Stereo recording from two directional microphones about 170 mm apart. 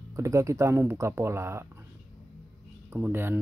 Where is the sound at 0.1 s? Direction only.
20° right (ahead or behind).